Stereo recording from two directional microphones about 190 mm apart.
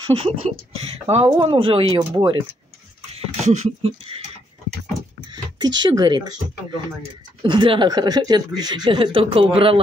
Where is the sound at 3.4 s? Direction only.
35° right (ahead or behind).